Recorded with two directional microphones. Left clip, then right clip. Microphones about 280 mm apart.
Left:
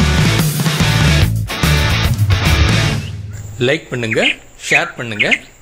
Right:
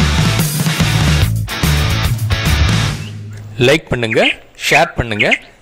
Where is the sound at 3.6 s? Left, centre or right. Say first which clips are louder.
Right 4 dB; right.